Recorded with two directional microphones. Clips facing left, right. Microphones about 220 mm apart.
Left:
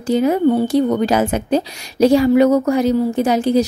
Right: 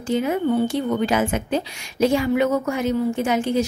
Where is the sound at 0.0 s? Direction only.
40° left (ahead or behind).